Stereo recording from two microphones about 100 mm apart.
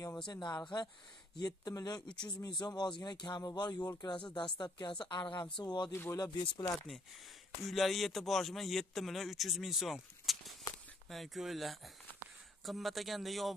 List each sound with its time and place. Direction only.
0.3 s speech: 45° left (ahead or behind)
1.7 s speech: 35° left (ahead or behind)
5.9 s speech: 30° left (ahead or behind)
6.4 s speech: 50° left (ahead or behind)
7.6 s speech: centre (ahead or behind)